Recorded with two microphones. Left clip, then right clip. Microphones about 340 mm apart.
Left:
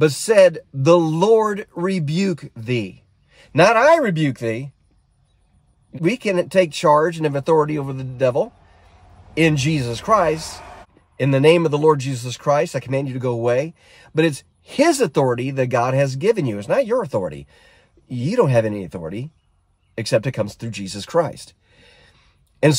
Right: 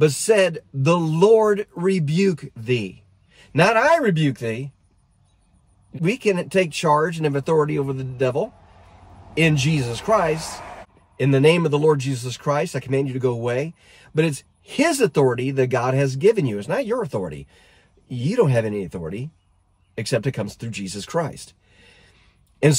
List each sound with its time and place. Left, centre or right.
0.0 s speech: centre
6.0 s speech: centre
10.6 s a sound: right
11.1 s speech: centre